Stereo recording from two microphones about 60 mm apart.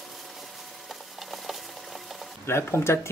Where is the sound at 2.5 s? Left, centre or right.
Left.